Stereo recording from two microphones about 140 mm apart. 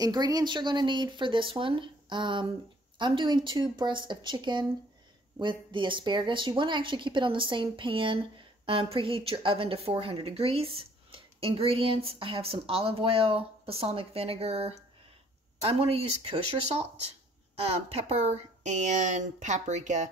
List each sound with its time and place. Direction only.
0.0 s speech: 30° right (ahead or behind); by 20.1 s 60° right (ahead or behind)